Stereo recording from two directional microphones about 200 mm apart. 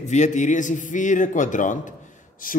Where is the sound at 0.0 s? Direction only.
35° left (ahead or behind).